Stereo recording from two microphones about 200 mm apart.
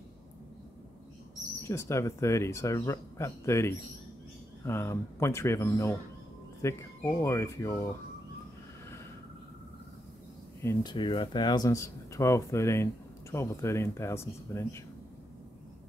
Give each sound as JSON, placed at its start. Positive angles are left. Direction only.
{"t": 1.7, "sound": "speech", "side_deg": 15}
{"t": 10.6, "sound": "speech", "side_deg": 15}